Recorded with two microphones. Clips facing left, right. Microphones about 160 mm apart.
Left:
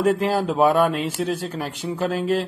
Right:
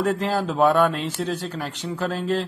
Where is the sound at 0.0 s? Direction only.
10° left (ahead or behind).